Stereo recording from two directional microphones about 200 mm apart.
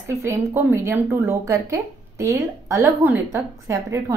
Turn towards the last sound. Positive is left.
turn(degrees=-15)  # may be behind; listen again after turning